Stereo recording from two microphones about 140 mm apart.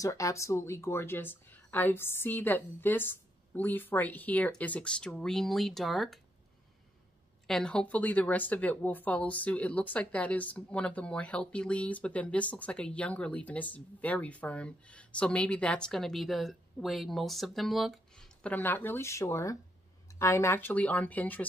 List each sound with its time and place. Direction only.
0.0 s speech: 20° left (ahead or behind); by 6.1 s centre (ahead or behind)
7.4 s speech: 5° left (ahead or behind)